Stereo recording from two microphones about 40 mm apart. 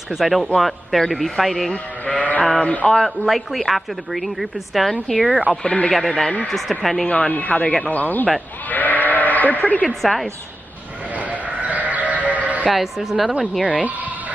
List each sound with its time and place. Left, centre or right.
0.1 s a woman's voice: centre
1.7 s speech: left
2.9 s a woman's voice: centre
5.5 s speech: left
5.9 s a man's voice: centre
7.1 s speech: left
8.6 s sheep: left
9.8 s a woman's voice: centre
11.1 s sheep: right
12.6 s a woman's voice: centre
13.7 s speech: right